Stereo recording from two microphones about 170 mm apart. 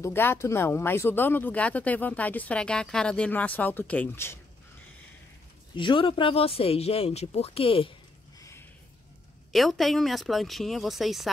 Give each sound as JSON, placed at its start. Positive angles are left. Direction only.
{"t": 0.0, "sound": "speech", "side_deg": 15}
{"t": 5.8, "sound": "speech", "side_deg": 30}
{"t": 8.4, "sound": "a sound", "side_deg": 15}
{"t": 9.5, "sound": "speech", "side_deg": 0}